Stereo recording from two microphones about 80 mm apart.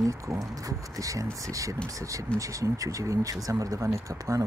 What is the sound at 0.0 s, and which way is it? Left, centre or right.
Speech, right.